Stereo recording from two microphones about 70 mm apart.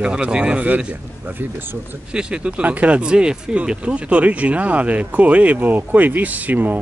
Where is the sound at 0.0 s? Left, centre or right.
Centre; by 2.0 s right.